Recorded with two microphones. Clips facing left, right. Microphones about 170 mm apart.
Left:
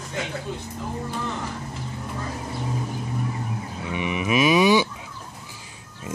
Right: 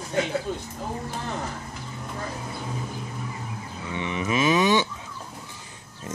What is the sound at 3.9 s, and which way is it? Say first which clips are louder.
Speech: left 3 dB; 15° left (ahead or behind).